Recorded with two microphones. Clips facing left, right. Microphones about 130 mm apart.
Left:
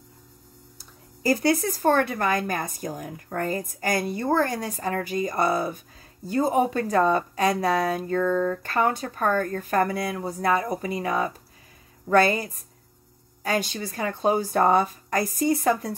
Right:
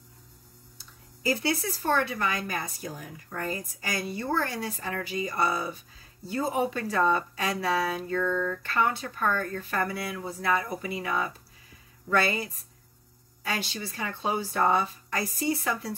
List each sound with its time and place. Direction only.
0.7 s speech: 45° left (ahead or behind)